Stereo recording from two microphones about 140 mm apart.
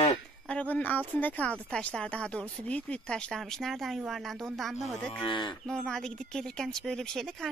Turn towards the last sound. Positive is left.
turn(degrees=5)  # may be behind; listen again after turning